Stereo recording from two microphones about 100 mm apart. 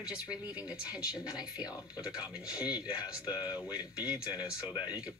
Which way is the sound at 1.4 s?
40° left (ahead or behind).